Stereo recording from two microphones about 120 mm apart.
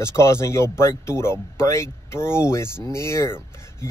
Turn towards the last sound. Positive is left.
turn(degrees=20)  # may be behind; listen again after turning